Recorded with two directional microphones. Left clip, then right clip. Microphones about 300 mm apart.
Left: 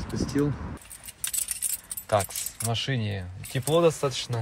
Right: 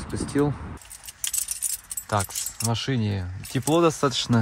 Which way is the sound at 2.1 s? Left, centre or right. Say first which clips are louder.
Left 1 dB; centre.